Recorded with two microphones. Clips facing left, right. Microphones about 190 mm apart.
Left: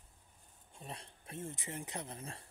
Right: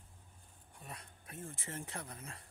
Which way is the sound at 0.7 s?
25° left (ahead or behind).